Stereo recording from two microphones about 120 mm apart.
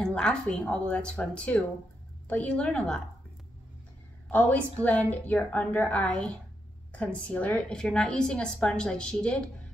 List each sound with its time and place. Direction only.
0.0 s a woman's voice: 5° left (ahead or behind)
4.3 s a woman's voice: 15° left (ahead or behind)